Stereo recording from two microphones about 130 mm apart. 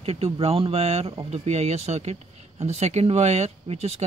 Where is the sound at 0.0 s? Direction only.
50° right (ahead or behind).